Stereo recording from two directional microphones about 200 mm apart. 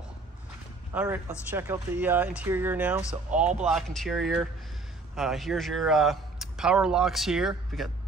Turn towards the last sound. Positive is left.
turn(degrees=0)  # may be behind; listen again after turning